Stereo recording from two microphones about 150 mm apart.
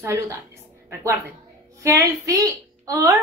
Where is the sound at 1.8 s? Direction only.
20° right (ahead or behind).